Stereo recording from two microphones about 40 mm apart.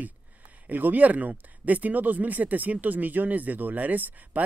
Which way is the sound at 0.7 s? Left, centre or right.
Right.